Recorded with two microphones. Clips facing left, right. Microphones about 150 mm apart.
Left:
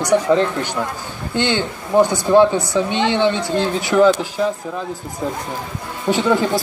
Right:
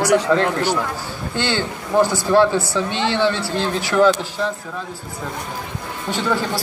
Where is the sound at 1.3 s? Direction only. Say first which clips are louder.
Left 3 dB; 20° left (ahead or behind).